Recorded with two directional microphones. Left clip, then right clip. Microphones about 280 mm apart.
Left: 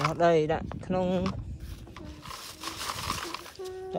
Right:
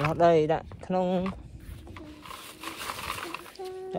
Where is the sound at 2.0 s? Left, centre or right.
Left.